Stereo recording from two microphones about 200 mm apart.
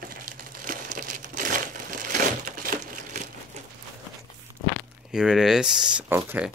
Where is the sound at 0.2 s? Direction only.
45° right (ahead or behind).